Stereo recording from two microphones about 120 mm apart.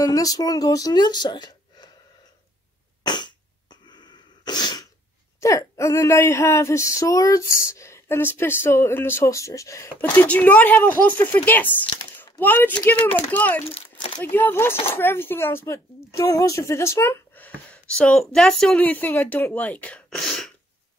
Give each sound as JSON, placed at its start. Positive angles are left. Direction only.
{"t": 0.0, "sound": "speech", "side_deg": 30}
{"t": 3.1, "sound": "cough", "side_deg": 40}
{"t": 3.8, "sound": "sneeze", "side_deg": 40}
{"t": 5.4, "sound": "speech", "side_deg": 25}
{"t": 10.0, "sound": "speech", "side_deg": 10}